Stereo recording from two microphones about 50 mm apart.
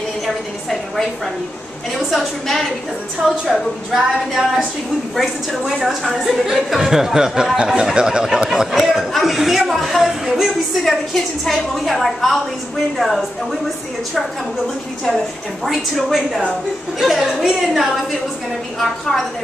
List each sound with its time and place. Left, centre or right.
2.0 s a woman's voice: centre
15.6 s a woman's voice: centre